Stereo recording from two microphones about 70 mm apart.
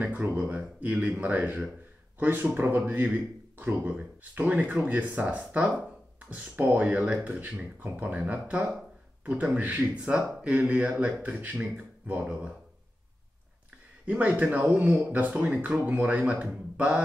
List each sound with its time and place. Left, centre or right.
0.0 s speech: right
14.0 s speech: right